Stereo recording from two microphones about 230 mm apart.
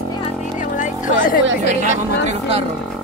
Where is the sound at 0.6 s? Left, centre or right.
Left.